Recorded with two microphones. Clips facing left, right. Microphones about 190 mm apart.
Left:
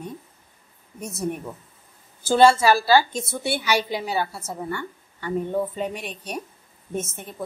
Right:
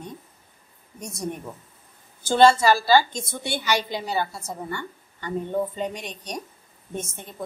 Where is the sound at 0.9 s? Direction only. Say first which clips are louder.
Left 3 dB; 5° left (ahead or behind).